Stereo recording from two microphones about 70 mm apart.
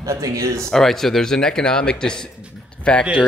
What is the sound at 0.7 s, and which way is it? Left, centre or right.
Speech, centre.